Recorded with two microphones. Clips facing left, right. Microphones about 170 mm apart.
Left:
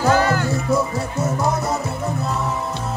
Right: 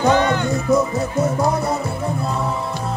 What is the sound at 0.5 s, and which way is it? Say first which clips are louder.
Music: right 3 dB; 20° right (ahead or behind).